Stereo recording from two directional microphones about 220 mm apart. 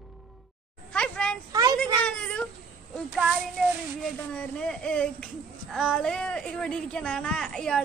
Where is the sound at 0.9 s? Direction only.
5° left (ahead or behind).